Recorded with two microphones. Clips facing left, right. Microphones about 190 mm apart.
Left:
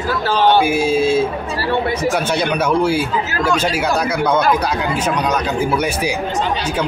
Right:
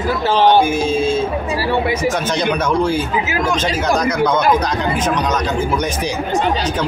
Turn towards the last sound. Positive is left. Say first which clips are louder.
# left 1 dB
turn(degrees=10)  # may be behind; listen again after turning